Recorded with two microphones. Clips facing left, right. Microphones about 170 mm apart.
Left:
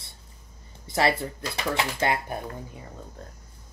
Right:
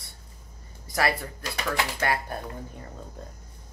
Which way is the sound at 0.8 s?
25° left (ahead or behind).